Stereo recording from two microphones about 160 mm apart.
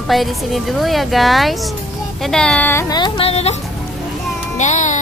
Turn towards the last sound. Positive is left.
turn(degrees=50)  # may be behind; listen again after turning